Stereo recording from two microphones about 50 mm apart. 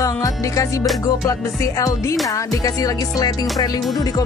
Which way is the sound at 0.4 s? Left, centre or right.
Left.